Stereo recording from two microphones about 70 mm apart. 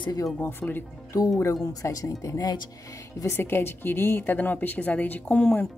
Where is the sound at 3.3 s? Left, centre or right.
Left.